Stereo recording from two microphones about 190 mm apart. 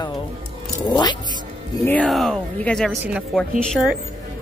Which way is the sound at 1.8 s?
5° left (ahead or behind).